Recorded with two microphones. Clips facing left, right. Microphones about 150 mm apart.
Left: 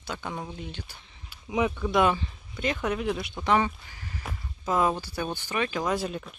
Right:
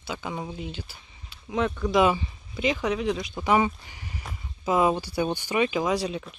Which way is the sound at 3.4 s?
10° right (ahead or behind).